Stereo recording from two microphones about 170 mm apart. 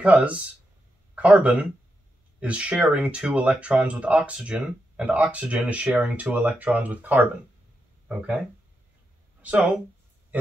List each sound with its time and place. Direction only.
0.0 s speech: 5° right (ahead or behind)